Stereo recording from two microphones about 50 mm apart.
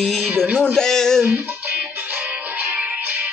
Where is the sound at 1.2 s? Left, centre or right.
Right.